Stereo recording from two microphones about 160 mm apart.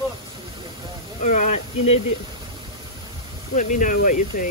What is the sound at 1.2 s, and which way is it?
Speech, 45° left (ahead or behind).